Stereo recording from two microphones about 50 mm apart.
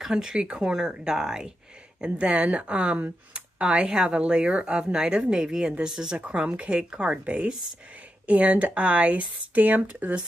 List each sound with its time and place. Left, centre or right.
0.0 s speech: centre; by 10.1 s right